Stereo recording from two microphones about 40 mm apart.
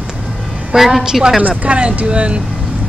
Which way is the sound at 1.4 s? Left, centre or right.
Right.